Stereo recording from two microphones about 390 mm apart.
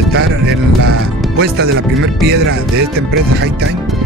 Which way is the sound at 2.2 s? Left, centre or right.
Right.